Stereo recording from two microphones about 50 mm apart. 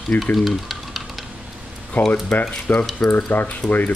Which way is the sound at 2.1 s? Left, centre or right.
Left.